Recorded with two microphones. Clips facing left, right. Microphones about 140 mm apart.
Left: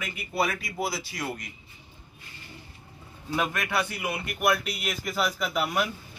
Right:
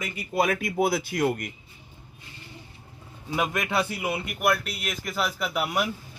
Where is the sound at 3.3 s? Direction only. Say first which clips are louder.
Right 2 dB; 15° right (ahead or behind).